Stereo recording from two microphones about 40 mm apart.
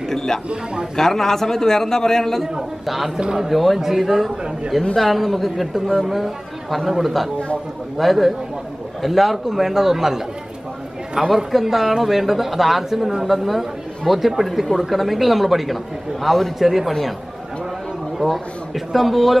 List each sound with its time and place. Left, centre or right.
0.1 s a sound: centre
0.9 s a man's voice: centre
3.2 s speech: centre
3.4 s a man's voice: centre
18.2 s speech: centre